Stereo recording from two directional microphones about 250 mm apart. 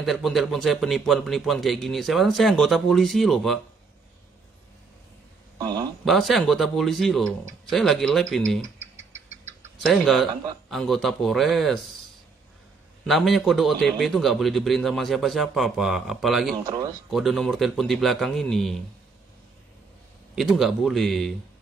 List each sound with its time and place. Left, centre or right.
0.0 s a man's voice: centre
5.6 s speech: centre
6.0 s a man's voice: centre
9.8 s a man's voice: centre
13.0 s a man's voice: centre
16.6 s speech: centre
17.1 s a man's voice: centre
20.3 s a man's voice: centre